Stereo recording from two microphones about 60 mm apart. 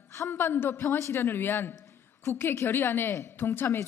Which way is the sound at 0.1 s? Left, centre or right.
Left.